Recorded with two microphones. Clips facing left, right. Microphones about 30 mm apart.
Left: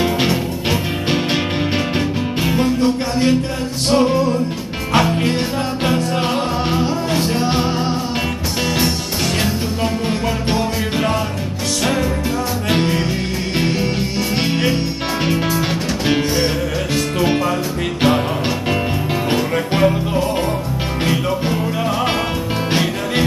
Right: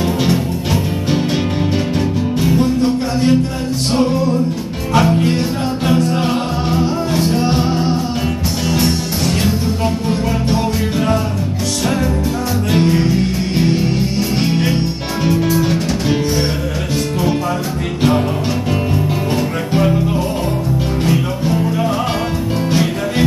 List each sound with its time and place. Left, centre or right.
2.4 s music: left
4.9 s music: left
12.7 s music: left
14.4 s music: left
19.3 s music: left
22.7 s music: left